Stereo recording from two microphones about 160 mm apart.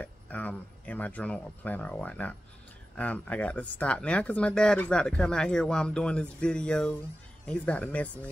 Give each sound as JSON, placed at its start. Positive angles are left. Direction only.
{"t": 0.0, "sound": "speech", "side_deg": 10}